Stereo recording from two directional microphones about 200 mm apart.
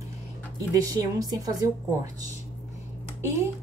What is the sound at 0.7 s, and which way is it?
Speech, 20° right (ahead or behind).